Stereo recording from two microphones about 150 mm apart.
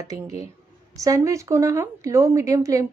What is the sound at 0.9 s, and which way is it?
A woman's voice, 20° right (ahead or behind).